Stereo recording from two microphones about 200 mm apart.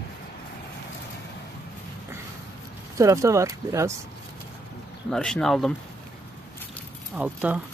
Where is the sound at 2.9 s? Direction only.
15° right (ahead or behind).